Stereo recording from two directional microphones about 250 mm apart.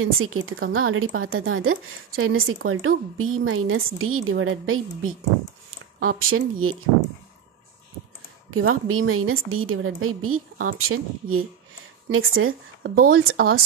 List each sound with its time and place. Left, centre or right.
0.0 s a woman's voice: right
8.5 s a woman's voice: right